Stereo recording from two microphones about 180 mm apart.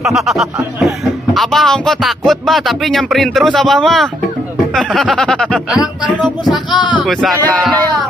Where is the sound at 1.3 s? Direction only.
Centre (ahead or behind).